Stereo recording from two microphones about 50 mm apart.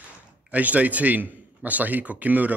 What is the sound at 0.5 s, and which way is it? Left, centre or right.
A man's voice, right.